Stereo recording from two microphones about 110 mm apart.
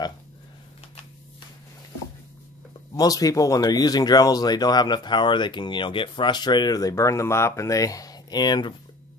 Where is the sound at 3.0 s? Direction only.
35° left (ahead or behind).